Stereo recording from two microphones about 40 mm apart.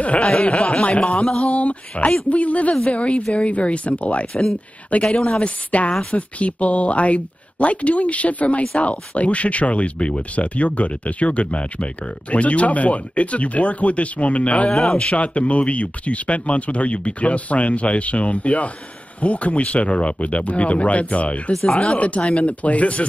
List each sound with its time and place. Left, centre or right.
0.2 s speech: centre
1.4 s speech: left
4.3 s speech: centre
5.1 s speech: left
14.7 s speech: centre
15.0 s speech: left